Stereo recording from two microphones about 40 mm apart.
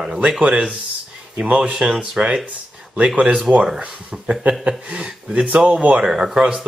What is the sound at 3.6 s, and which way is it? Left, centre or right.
A man's voice, centre.